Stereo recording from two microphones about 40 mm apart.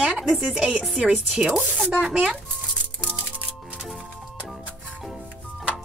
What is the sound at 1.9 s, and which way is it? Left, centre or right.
Speech, right.